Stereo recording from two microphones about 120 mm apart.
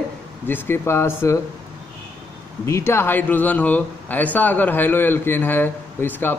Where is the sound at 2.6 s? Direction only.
25° left (ahead or behind).